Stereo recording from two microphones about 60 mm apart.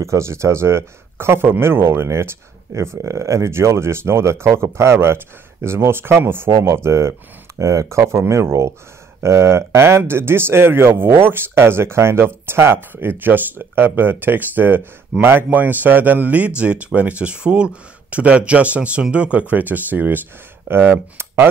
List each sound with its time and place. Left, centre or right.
0.0 s a man's voice: right